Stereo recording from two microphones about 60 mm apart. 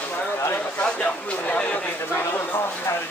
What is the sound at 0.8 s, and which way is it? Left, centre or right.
Speech, left.